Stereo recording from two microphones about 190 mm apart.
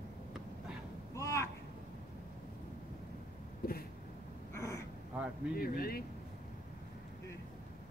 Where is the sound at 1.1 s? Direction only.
15° left (ahead or behind).